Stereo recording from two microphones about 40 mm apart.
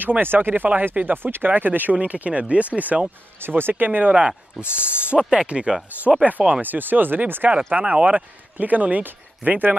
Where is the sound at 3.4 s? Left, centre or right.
Right.